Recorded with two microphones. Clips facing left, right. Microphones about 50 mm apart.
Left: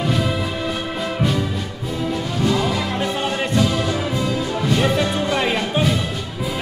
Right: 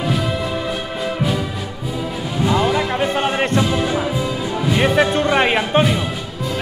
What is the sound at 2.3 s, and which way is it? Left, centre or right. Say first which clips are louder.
Music: right 3 dB; centre.